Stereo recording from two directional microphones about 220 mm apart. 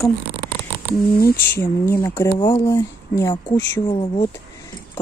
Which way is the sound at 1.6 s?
10° left (ahead or behind).